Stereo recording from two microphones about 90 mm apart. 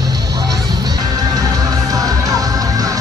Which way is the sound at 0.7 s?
50° right (ahead or behind).